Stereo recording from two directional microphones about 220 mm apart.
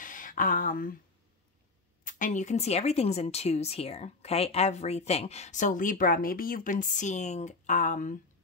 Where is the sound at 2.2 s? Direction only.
35° left (ahead or behind).